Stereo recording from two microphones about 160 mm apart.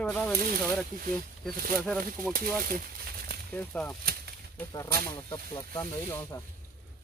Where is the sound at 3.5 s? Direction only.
10° left (ahead or behind).